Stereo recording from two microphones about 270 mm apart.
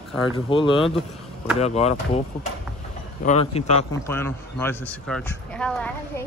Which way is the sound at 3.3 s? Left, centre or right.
Left.